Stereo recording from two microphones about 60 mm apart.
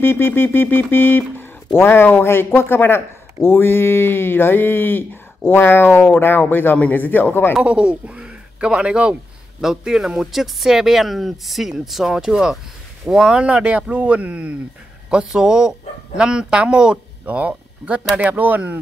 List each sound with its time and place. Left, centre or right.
0.0 s speech: left
7.5 s speech: centre
17.3 s speech: right